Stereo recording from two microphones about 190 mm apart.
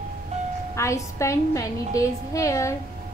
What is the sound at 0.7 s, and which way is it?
A woman's voice, 15° left (ahead or behind).